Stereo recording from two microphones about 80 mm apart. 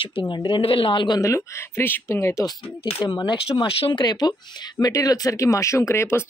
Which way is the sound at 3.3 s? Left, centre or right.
Left.